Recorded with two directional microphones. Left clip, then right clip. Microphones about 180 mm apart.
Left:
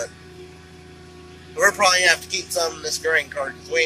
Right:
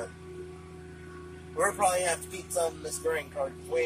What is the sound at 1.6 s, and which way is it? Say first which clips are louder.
Speech: left 10 dB; centre (ahead or behind).